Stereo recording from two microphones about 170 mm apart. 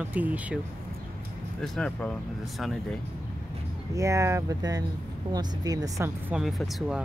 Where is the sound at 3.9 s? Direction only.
20° right (ahead or behind).